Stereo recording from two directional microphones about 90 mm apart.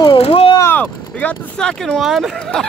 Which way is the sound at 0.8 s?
10° left (ahead or behind).